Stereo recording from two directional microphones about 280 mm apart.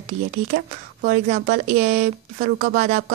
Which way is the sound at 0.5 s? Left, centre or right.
Right.